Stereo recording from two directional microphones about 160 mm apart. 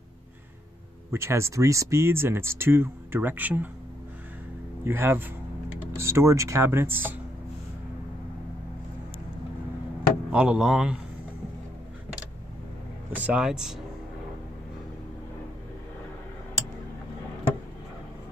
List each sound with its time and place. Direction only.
1.1 s speech: 15° right (ahead or behind)
4.8 s speech: 15° right (ahead or behind)
10.3 s speech: 5° right (ahead or behind)
13.1 s speech: 10° right (ahead or behind)